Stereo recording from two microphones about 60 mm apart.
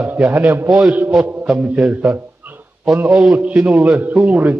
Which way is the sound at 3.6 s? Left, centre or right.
Right.